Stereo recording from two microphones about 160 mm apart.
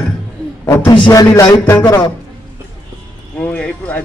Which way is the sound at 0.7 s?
20° left (ahead or behind).